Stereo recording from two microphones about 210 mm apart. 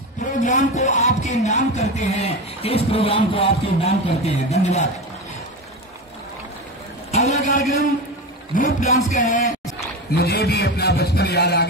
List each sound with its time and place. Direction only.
0.4 s music: 35° left (ahead or behind)
7.1 s a sound: 30° left (ahead or behind)
8.5 s music: 35° left (ahead or behind)
10.1 s a man's voice: 50° left (ahead or behind)